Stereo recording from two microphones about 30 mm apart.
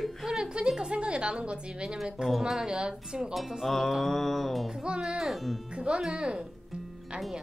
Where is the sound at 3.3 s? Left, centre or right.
Centre.